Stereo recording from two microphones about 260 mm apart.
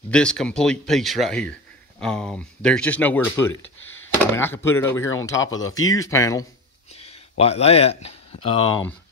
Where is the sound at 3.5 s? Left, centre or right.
Left.